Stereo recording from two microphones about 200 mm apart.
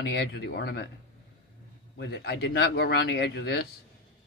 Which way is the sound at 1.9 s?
55° left (ahead or behind).